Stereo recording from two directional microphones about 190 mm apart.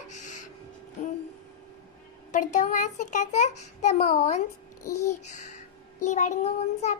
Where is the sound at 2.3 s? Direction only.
40° left (ahead or behind).